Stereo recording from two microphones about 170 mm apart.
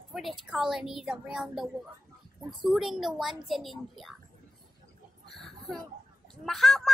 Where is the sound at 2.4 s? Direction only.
25° right (ahead or behind).